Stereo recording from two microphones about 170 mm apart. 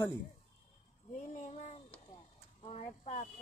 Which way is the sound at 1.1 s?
45° left (ahead or behind).